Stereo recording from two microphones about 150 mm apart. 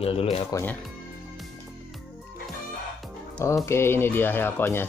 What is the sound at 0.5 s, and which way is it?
Speech, 10° left (ahead or behind).